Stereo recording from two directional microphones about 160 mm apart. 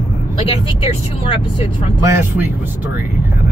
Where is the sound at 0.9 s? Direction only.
40° left (ahead or behind).